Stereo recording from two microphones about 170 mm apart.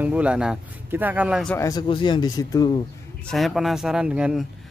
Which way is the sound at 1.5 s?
20° left (ahead or behind).